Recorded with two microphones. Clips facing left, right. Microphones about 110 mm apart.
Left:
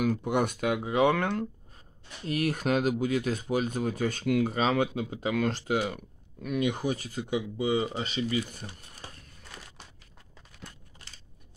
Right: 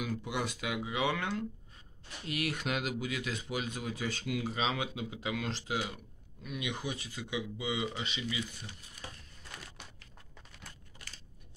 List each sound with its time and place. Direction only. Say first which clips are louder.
0.0 s speech: left 9 dB; 50° left (ahead or behind)
2.2 s speech: left 7 dB; 40° left (ahead or behind)